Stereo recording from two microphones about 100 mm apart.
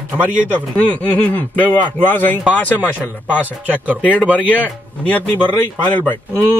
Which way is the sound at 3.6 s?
15° right (ahead or behind).